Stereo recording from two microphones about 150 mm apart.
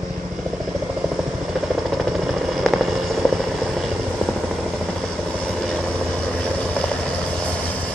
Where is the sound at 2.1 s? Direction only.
Centre (ahead or behind).